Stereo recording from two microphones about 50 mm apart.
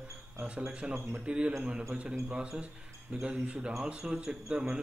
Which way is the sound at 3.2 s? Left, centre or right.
Right.